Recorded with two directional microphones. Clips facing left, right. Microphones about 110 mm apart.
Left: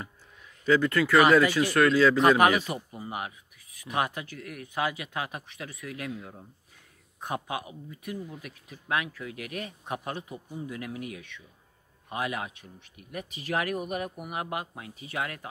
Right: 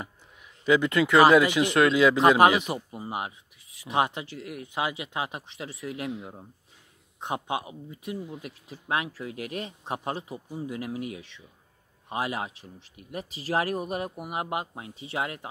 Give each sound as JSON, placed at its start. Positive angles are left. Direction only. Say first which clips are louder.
{"t": 0.7, "sound": "speech", "louder": "right 1 dB", "side_deg": -20}
{"t": 2.1, "sound": "speech", "louder": "right 2 dB", "side_deg": -30}